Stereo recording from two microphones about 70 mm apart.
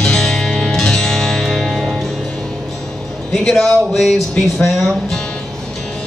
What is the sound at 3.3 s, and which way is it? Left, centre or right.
Speech, centre.